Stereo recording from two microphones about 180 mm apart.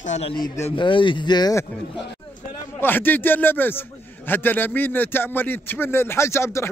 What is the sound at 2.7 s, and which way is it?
A man's voice, 10° left (ahead or behind).